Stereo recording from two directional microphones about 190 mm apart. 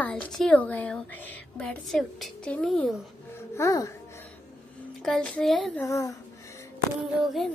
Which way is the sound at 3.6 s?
15° left (ahead or behind).